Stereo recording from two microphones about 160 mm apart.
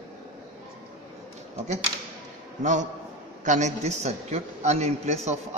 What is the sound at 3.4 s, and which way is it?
A man's voice, 50° right (ahead or behind).